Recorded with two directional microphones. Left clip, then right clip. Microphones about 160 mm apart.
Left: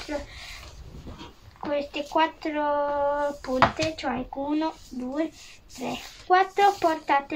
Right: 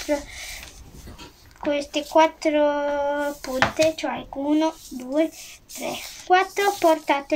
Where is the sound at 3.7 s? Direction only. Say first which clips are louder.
Right 6 dB; 40° right (ahead or behind).